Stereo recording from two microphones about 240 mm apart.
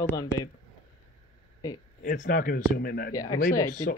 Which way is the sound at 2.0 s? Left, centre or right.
Left.